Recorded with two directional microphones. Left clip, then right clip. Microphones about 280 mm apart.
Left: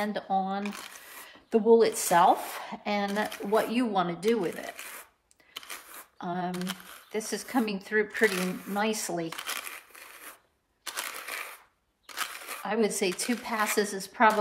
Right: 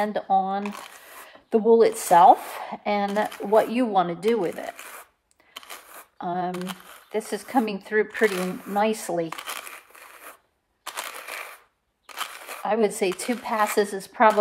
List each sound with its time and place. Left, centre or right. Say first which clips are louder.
0.0 s speech: right 7 dB; right
4.7 s speech: right 2 dB; centre
6.1 s speech: right 6 dB; right
6.5 s speech: right 3 dB; centre
7.1 s speech: right 5 dB; right
8.4 s speech: right 4 dB; centre
8.7 s speech: right 7 dB; right
9.3 s crumpling: right 2 dB; centre
11.0 s crushing: right 2 dB; centre
12.2 s a sound: right 2 dB; centre
12.6 s speech: right 5 dB; right